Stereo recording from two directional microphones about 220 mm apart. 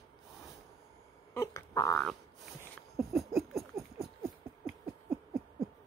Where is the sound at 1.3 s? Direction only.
15° left (ahead or behind).